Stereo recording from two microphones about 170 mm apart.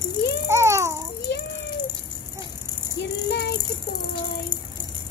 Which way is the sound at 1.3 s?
75° left (ahead or behind).